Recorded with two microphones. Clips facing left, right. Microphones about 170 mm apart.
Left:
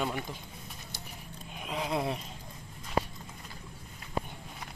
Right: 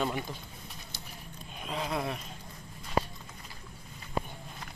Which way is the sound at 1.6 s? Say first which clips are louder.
Even; 10° left (ahead or behind).